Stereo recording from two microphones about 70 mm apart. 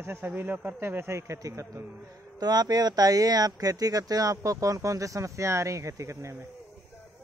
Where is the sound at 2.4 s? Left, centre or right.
Right.